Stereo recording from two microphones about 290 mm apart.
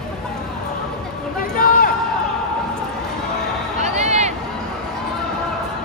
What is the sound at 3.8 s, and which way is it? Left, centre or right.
Music, right.